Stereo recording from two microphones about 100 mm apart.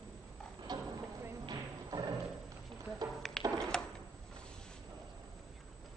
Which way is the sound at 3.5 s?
5° left (ahead or behind).